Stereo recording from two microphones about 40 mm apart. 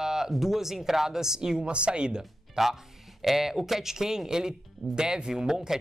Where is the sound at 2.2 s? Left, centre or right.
Centre.